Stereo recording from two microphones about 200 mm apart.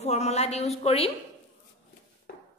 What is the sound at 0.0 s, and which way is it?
A woman's voice, 30° left (ahead or behind).